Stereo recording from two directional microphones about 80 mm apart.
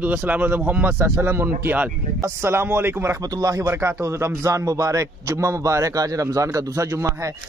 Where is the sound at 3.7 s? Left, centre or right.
Right.